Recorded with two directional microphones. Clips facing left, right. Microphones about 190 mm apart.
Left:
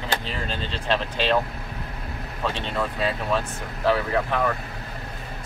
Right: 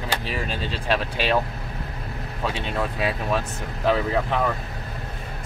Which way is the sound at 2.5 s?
10° right (ahead or behind).